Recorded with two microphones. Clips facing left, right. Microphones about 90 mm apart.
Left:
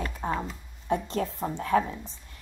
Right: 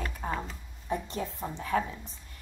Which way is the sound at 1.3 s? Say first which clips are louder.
Left 5 dB; 35° left (ahead or behind).